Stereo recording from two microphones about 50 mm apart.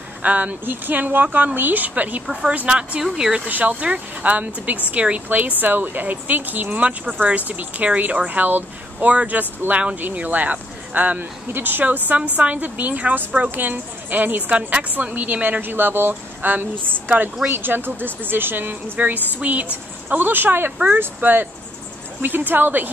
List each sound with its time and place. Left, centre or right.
0.2 s speech: right
3.0 s speech: centre
3.4 s speech: right
15.6 s a woman's voice: right